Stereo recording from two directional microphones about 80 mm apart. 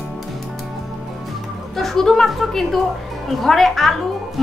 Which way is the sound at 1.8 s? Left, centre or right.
Centre.